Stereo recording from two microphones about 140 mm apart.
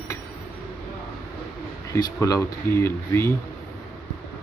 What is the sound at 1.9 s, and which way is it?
Speech, 25° left (ahead or behind).